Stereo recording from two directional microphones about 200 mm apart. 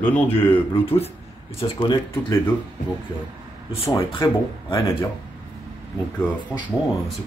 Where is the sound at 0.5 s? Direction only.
30° left (ahead or behind).